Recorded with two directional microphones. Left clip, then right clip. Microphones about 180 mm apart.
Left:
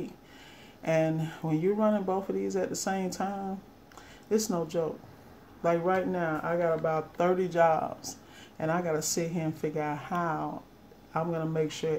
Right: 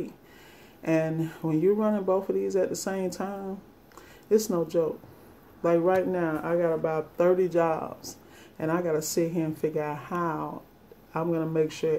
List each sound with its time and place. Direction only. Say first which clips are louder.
0.8 s speech: right 1 dB; 15° right (ahead or behind)